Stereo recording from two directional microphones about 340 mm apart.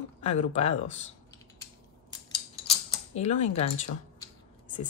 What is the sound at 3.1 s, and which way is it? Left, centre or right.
Speech, centre.